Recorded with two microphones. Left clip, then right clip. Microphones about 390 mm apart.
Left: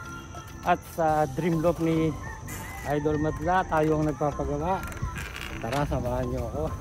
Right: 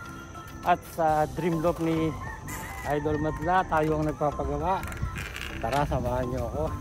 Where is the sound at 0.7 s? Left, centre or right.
Centre.